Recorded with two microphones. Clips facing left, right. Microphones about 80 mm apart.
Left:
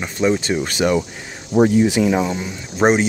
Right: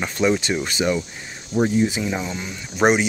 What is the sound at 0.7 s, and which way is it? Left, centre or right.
Speech, left.